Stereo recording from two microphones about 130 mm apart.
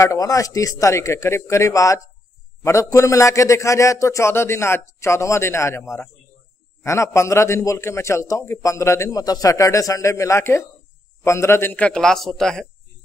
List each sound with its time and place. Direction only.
0.0 s a man's voice: 25° left (ahead or behind); by 12.6 s 5° left (ahead or behind)